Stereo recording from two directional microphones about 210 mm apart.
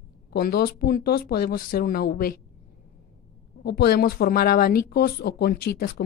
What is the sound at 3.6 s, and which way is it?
Speech, 50° left (ahead or behind).